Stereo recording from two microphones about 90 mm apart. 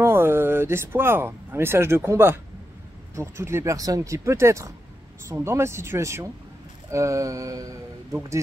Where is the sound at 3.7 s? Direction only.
40° right (ahead or behind).